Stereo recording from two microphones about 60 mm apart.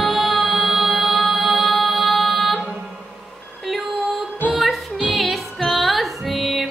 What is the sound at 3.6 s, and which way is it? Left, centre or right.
Music, centre.